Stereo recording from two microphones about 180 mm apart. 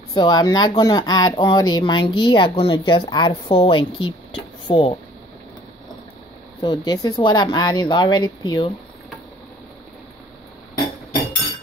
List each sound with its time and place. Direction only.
0.1 s speech: 25° left (ahead or behind)
6.6 s speech: 25° left (ahead or behind)